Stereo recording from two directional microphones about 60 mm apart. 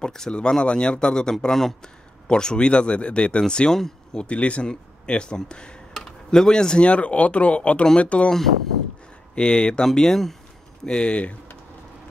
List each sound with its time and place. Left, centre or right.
0.0 s speech: centre
9.3 s speech: centre